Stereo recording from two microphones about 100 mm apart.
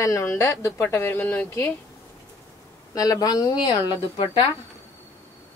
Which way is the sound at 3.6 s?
65° left (ahead or behind).